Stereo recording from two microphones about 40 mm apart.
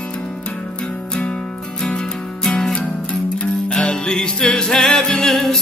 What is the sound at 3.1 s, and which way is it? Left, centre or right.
Music, left.